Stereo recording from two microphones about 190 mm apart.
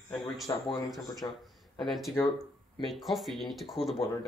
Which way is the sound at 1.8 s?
Centre (ahead or behind).